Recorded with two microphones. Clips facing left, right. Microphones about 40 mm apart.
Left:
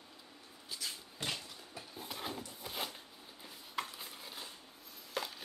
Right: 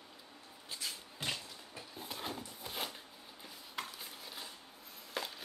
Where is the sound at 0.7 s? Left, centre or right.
Right.